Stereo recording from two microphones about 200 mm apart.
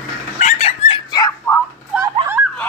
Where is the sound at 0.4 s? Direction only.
35° left (ahead or behind); by 1.6 s 20° left (ahead or behind).